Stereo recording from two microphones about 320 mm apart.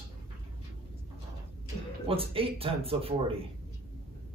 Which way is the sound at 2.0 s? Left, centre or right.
Centre.